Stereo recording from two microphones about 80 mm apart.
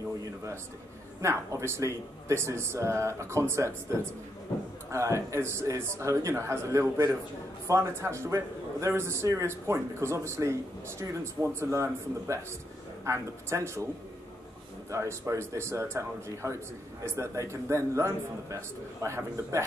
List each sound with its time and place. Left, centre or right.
1.2 s speech: right
11.7 s speech: right
14.9 s speech: right